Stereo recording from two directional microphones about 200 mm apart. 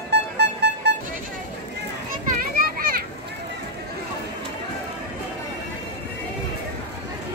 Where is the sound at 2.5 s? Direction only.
45° right (ahead or behind).